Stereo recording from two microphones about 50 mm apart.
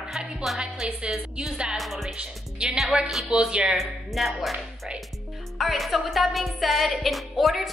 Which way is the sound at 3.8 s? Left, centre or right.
Centre.